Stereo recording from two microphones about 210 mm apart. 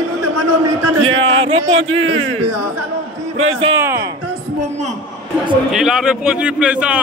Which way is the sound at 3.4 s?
25° right (ahead or behind).